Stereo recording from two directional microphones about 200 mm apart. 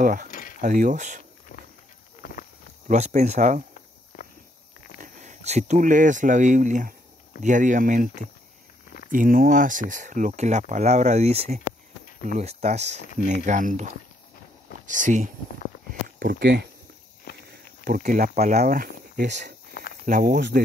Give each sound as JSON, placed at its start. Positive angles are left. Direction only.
{"t": 0.0, "sound": "speech", "side_deg": -40}
{"t": 0.3, "sound": "a sound", "side_deg": 45}
{"t": 0.6, "sound": "speech", "side_deg": -40}
{"t": 2.2, "sound": "a sound", "side_deg": 50}
{"t": 2.9, "sound": "speech", "side_deg": -35}
{"t": 5.0, "sound": "speech", "side_deg": -40}
{"t": 9.1, "sound": "speech", "side_deg": -45}
{"t": 14.9, "sound": "speech", "side_deg": -40}
{"t": 15.9, "sound": "a sound", "side_deg": -45}
{"t": 17.2, "sound": "walk", "side_deg": 50}
{"t": 17.8, "sound": "speech", "side_deg": -40}